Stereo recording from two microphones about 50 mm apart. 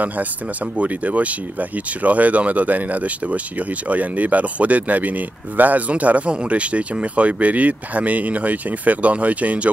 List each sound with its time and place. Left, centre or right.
0.7 s speech: right